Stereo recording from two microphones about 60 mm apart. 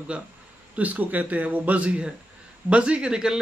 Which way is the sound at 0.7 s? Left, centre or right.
Right.